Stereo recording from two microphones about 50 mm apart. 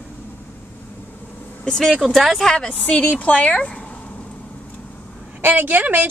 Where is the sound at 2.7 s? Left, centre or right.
Left.